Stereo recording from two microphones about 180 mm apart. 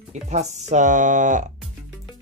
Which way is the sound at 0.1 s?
40° right (ahead or behind).